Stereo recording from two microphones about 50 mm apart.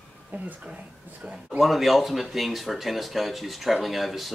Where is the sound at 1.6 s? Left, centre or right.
Centre.